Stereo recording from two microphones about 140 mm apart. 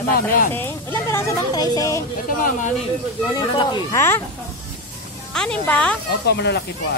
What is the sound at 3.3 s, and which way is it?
Speech, 30° left (ahead or behind).